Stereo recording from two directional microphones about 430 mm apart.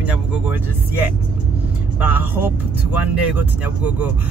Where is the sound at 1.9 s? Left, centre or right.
Centre.